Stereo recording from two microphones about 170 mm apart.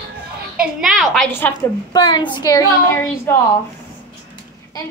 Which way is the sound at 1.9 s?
25° left (ahead or behind).